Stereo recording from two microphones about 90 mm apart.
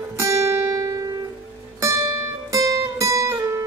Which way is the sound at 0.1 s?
35° right (ahead or behind).